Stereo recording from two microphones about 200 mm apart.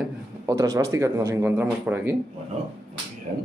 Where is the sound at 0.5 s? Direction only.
15° right (ahead or behind).